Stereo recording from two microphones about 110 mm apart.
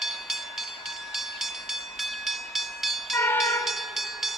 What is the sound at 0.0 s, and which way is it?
Train, centre (ahead or behind).